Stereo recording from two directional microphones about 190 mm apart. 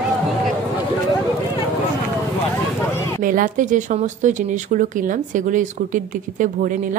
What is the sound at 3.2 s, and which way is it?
A woman's voice, 45° right (ahead or behind).